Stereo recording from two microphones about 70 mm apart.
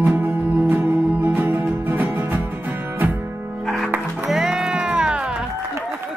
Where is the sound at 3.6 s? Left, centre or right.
Centre.